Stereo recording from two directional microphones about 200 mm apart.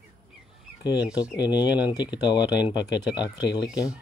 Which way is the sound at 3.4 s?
60° left (ahead or behind).